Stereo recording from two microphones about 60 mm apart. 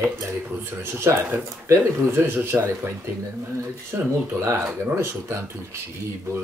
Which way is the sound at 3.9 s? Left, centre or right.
Right.